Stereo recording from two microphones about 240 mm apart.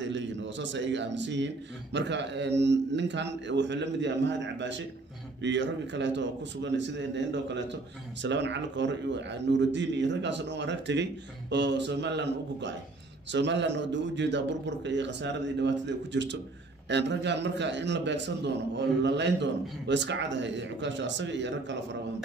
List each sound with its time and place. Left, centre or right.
0.0 s a man's voice: right